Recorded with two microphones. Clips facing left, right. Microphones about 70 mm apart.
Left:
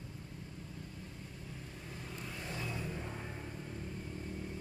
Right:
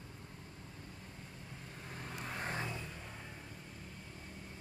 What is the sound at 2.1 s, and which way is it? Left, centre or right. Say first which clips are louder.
Vehicle: right 4 dB; right.